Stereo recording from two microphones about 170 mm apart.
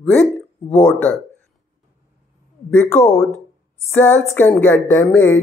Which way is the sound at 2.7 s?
10° left (ahead or behind).